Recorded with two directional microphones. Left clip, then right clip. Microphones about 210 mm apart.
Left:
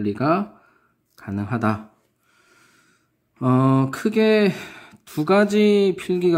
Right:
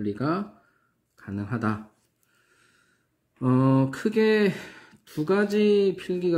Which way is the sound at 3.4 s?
25° left (ahead or behind).